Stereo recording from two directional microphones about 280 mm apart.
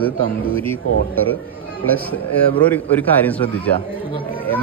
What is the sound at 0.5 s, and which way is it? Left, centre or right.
Speech, centre.